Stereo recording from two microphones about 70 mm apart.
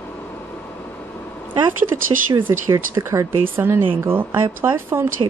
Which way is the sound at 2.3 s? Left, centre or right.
Right.